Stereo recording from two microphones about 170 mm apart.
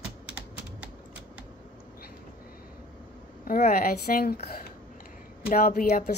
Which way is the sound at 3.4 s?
60° left (ahead or behind).